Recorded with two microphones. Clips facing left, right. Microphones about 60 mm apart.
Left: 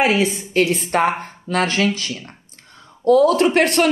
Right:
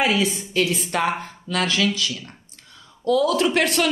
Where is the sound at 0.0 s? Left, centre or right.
Left.